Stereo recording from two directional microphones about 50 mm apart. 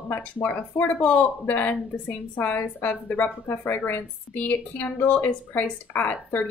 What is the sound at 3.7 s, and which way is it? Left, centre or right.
A woman's voice, left.